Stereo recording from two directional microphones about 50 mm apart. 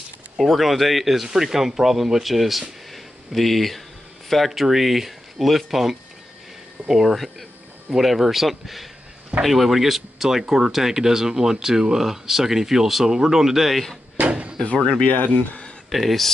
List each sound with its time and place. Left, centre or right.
0.4 s speech: centre
2.9 s a sound: centre
4.3 s speech: centre
14.1 s drawer open or close: right
15.0 s speech: left
15.9 s speech: centre